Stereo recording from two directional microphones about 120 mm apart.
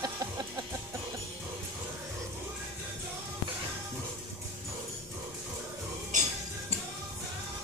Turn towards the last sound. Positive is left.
turn(degrees=-90)